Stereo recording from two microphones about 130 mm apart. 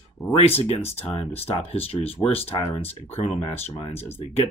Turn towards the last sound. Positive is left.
turn(degrees=50)  # may be behind; listen again after turning